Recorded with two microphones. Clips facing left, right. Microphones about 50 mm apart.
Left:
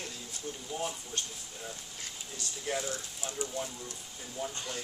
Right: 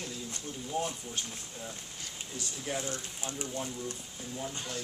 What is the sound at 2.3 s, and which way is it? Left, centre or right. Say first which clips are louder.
Speech: left 1 dB; centre.